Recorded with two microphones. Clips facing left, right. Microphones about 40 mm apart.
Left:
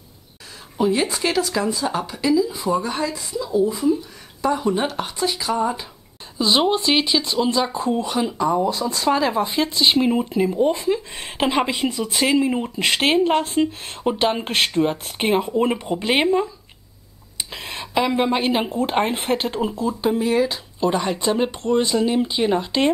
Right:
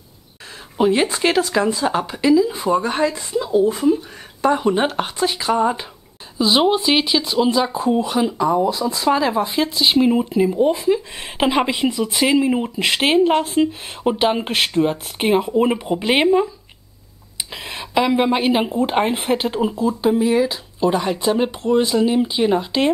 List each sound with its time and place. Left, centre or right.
0.7 s speech: right
2.5 s speech: right
6.3 s speech: centre
17.5 s speech: centre